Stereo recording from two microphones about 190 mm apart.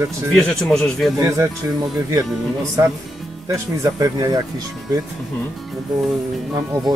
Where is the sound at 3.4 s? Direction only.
20° right (ahead or behind).